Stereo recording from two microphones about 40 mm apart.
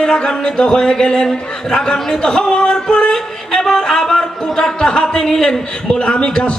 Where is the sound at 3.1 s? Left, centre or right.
Centre.